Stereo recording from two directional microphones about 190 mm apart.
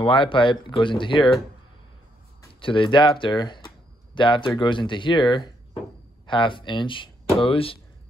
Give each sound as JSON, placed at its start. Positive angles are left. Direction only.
{"t": 0.0, "sound": "speech", "side_deg": 25}
{"t": 2.6, "sound": "speech", "side_deg": 25}